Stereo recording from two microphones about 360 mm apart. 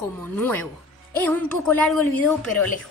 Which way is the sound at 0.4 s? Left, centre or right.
Centre.